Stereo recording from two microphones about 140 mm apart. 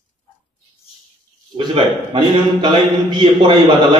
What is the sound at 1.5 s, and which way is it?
A man's voice, 35° right (ahead or behind).